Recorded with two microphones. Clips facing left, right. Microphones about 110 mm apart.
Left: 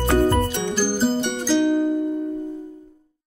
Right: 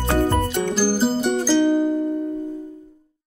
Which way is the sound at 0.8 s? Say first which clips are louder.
Even; 5° right (ahead or behind).